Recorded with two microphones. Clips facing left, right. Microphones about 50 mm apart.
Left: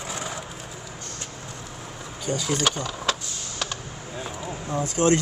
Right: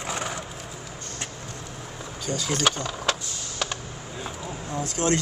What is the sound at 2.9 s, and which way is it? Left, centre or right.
Power windows, centre.